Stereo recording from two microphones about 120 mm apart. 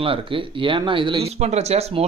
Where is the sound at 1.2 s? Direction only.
65° right (ahead or behind).